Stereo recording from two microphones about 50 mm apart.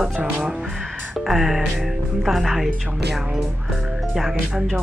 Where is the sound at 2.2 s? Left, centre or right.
Centre.